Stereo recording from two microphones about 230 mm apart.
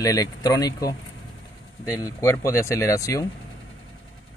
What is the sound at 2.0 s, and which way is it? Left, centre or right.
Speech, centre.